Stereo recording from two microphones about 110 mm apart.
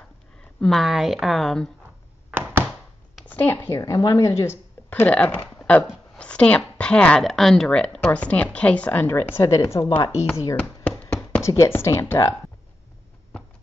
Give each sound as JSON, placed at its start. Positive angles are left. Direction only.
{"t": 0.6, "sound": "a woman's voice", "side_deg": 0}
{"t": 3.3, "sound": "speech", "side_deg": 20}
{"t": 3.8, "sound": "speech", "side_deg": 35}
{"t": 5.6, "sound": "a sound", "side_deg": 10}
{"t": 6.1, "sound": "speech", "side_deg": 10}
{"t": 10.5, "sound": "a sound", "side_deg": 10}
{"t": 11.4, "sound": "speech", "side_deg": 25}